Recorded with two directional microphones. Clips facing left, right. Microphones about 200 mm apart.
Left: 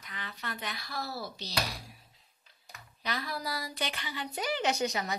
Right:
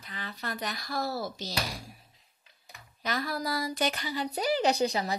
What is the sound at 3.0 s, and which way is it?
Speech, 45° right (ahead or behind).